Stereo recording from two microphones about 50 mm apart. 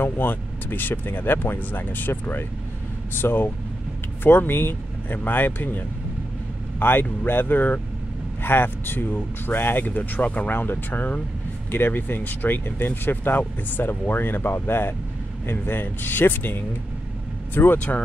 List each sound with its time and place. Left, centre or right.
0.0 s speech: left
17.7 s speech: left